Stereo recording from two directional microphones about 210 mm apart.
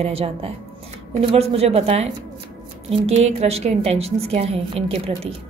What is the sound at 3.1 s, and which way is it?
A woman's voice, 30° right (ahead or behind).